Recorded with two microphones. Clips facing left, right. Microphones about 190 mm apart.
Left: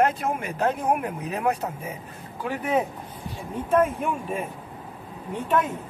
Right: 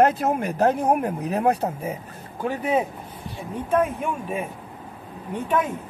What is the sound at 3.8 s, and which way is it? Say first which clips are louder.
Speech: even; centre (ahead or behind).